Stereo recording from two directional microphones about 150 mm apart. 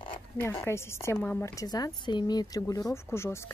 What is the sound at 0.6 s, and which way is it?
A woman's voice, 15° left (ahead or behind).